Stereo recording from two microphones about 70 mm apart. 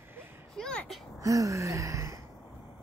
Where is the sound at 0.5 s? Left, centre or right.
Centre.